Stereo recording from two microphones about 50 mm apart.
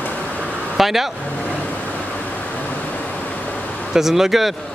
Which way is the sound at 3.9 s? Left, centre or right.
Centre.